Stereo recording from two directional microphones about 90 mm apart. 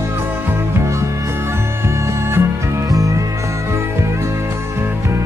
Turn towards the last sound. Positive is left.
turn(degrees=-30)  # may be behind; listen again after turning